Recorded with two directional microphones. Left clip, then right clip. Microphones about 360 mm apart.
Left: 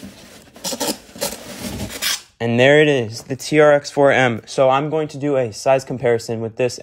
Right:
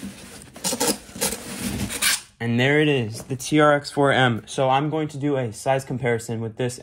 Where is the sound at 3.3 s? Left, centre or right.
Left.